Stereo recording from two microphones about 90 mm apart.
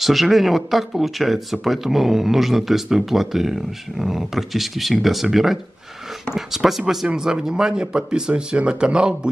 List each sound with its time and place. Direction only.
0.0 s speech: centre (ahead or behind)